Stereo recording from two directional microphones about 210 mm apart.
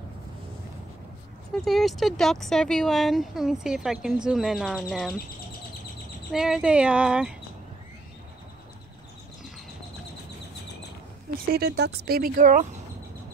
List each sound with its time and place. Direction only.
1.5 s speech: centre (ahead or behind)
6.3 s speech: 5° right (ahead or behind)
11.5 s speech: 50° right (ahead or behind)